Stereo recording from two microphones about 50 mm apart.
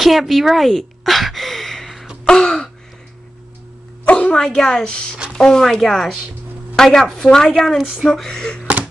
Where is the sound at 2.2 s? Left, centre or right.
Centre.